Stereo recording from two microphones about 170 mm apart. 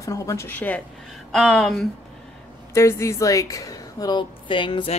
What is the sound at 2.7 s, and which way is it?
A woman's voice, 15° left (ahead or behind).